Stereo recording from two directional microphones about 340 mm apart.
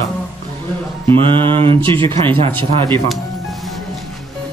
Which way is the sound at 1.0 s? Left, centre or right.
Centre.